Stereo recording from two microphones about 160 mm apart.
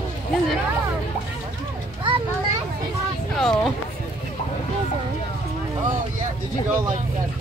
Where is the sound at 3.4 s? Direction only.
Centre (ahead or behind).